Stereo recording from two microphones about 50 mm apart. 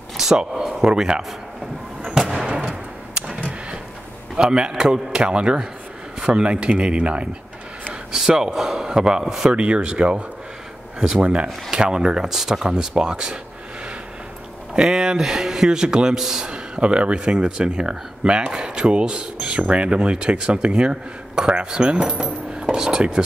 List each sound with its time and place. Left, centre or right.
0.2 s speech: centre
2.0 s a sound: centre
4.4 s speech: centre
8.1 s speech: centre
9.5 s speech: right
14.7 s speech: centre